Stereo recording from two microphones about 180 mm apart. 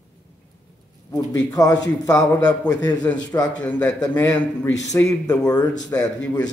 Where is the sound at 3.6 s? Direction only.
10° left (ahead or behind).